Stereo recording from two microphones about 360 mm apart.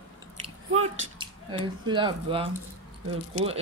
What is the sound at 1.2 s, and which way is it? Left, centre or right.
A woman's voice, centre.